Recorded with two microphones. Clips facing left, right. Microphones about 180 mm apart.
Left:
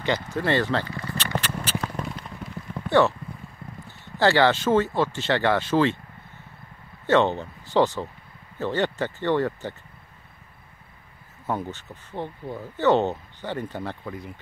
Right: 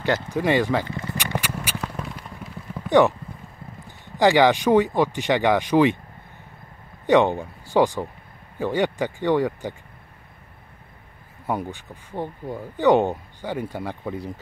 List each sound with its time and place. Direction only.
0.0 s speech: 10° right (ahead or behind)
0.8 s a sound: 20° right (ahead or behind); by 2.2 s centre (ahead or behind)
2.9 s speech: 15° right (ahead or behind)
7.1 s speech: 15° right (ahead or behind)
11.4 s speech: 10° right (ahead or behind)
14.0 s speech: 30° right (ahead or behind)